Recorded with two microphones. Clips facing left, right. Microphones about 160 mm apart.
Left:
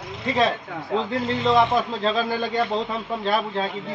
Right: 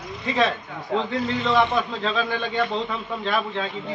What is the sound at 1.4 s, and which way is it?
A man's voice, 35° left (ahead or behind).